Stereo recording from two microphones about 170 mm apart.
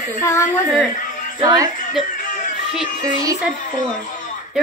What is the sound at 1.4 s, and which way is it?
Speech, 20° right (ahead or behind).